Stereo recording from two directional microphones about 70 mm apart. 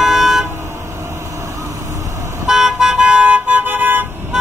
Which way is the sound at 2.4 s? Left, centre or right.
Centre.